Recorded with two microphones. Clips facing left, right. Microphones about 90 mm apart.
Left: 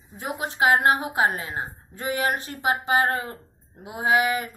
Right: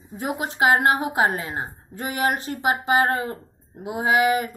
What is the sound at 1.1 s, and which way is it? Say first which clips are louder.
Speech: right 2 dB; 40° right (ahead or behind).